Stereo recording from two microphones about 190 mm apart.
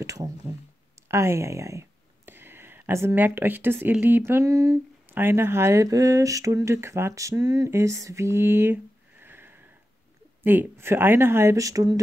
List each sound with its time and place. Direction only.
0.0 s speech: 15° right (ahead or behind)
9.2 s sniff: 10° right (ahead or behind)
10.4 s speech: 10° right (ahead or behind)